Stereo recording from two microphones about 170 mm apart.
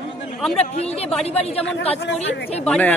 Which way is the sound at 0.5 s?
35° left (ahead or behind).